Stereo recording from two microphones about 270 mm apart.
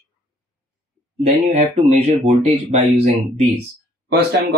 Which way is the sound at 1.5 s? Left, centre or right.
Right.